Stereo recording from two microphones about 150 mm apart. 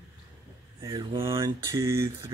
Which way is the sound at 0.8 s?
35° right (ahead or behind).